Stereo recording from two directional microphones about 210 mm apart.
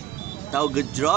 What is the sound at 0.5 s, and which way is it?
Speech, 5° right (ahead or behind).